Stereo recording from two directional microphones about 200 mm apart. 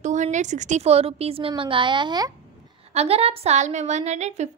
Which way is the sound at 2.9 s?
30° right (ahead or behind).